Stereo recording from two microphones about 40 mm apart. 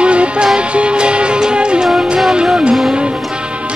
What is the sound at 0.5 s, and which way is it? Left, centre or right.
Music, right.